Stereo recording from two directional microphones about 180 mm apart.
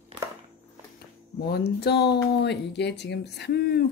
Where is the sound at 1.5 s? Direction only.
65° left (ahead or behind).